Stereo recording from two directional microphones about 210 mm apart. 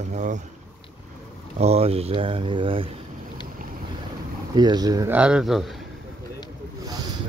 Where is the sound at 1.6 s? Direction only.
30° right (ahead or behind).